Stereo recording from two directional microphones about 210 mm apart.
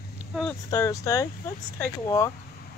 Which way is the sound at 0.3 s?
Centre (ahead or behind).